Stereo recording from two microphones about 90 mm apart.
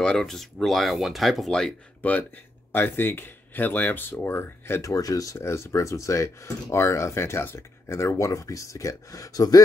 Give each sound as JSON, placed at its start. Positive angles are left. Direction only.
{"t": 0.0, "sound": "speech", "side_deg": 5}
{"t": 2.0, "sound": "speech", "side_deg": 15}
{"t": 4.8, "sound": "speech", "side_deg": 40}